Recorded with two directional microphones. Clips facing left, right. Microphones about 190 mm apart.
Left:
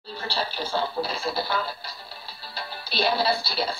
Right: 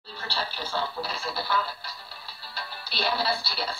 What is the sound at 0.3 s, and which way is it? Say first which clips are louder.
Speech: left 4 dB; 30° left (ahead or behind).